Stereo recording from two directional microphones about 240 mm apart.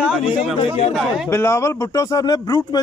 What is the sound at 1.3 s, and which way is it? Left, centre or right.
Speech, centre.